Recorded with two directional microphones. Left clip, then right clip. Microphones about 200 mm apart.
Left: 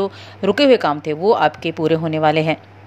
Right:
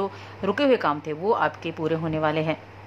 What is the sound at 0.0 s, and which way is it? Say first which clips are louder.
A woman's voice: left 7 dB; 20° left (ahead or behind).